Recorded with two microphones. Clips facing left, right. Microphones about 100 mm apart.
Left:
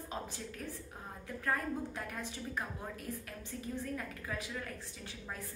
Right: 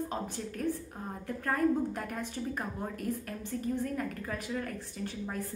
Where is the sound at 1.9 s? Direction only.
50° right (ahead or behind).